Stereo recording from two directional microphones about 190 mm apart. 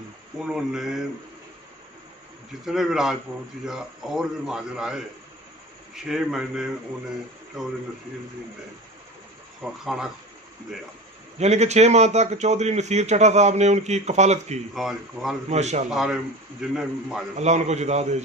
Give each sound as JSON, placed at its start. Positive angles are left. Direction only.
{"t": 0.4, "sound": "a man's voice", "side_deg": -5}
{"t": 2.6, "sound": "a man's voice", "side_deg": 0}
{"t": 6.0, "sound": "a man's voice", "side_deg": -5}
{"t": 9.6, "sound": "a man's voice", "side_deg": -5}
{"t": 11.3, "sound": "a man's voice", "side_deg": -35}
{"t": 14.7, "sound": "a man's voice", "side_deg": 0}
{"t": 15.5, "sound": "a man's voice", "side_deg": -35}
{"t": 15.9, "sound": "a man's voice", "side_deg": 0}
{"t": 17.4, "sound": "a man's voice", "side_deg": -35}